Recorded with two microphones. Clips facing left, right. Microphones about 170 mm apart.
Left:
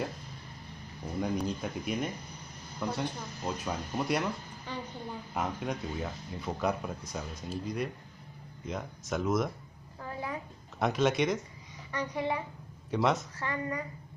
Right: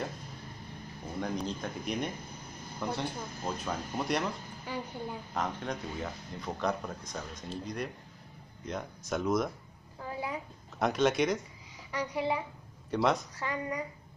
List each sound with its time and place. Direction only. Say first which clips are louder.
1.2 s speech: left 2 dB; 5° left (ahead or behind)
4.7 s a woman's voice: right 2 dB; 10° right (ahead or behind)
5.3 s speech: left 2 dB; 10° left (ahead or behind)
9.9 s a sound: right 1 dB; 10° right (ahead or behind)
10.8 s speech: even; centre (ahead or behind)
11.9 s a woman's voice: right 1 dB; 10° right (ahead or behind)
12.9 s speech: even; centre (ahead or behind)
13.4 s a woman's voice: even; 15° right (ahead or behind)